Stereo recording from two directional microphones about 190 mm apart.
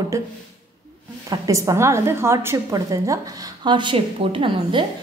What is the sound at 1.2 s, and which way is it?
A woman's voice, 20° right (ahead or behind).